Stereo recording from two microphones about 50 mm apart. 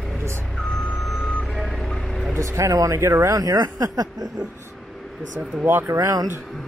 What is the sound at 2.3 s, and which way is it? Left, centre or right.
Speech, right.